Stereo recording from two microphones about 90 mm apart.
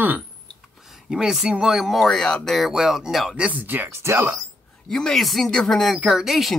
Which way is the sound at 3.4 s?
20° right (ahead or behind).